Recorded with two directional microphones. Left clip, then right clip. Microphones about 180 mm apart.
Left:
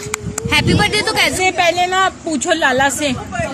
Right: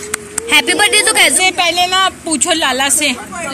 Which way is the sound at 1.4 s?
55° left (ahead or behind).